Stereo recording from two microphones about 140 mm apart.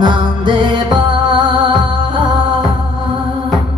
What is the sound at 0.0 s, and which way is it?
Music, 35° right (ahead or behind).